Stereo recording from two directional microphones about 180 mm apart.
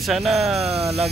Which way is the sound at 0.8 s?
35° right (ahead or behind).